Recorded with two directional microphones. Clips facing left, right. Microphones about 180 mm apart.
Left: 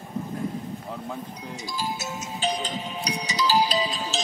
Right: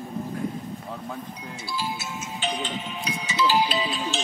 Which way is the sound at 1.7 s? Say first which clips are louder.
Even; 40° left (ahead or behind).